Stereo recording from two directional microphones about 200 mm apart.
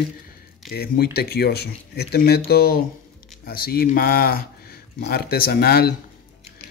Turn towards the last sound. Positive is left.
turn(degrees=50)  # may be behind; listen again after turning